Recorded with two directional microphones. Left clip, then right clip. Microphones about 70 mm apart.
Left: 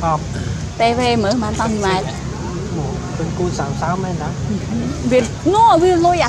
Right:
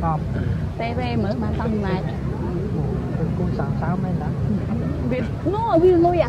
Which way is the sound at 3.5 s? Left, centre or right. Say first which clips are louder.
Left 6 dB; left.